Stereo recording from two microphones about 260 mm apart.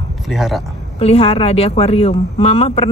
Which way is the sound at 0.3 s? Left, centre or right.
Centre.